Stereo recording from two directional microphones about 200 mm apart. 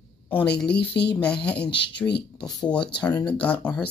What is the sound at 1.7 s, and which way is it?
Speech, 60° left (ahead or behind).